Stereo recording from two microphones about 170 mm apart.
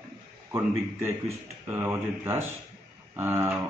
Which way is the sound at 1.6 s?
15° right (ahead or behind).